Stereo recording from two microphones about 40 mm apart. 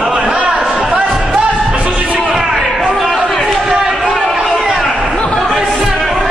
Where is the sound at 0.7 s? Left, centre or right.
Right.